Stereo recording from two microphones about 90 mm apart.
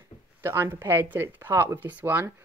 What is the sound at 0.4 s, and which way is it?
Speech, 30° right (ahead or behind).